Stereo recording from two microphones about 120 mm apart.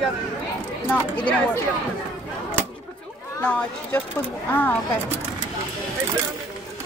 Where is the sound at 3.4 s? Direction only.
10° left (ahead or behind).